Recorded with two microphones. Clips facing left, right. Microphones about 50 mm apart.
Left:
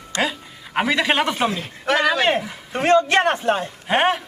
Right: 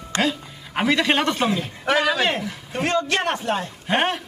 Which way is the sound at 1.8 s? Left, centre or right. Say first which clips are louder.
Left 2 dB; centre.